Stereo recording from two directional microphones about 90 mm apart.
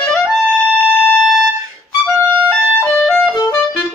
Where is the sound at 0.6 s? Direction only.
15° left (ahead or behind).